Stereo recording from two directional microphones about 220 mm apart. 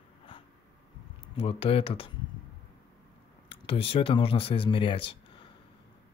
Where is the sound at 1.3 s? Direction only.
25° left (ahead or behind).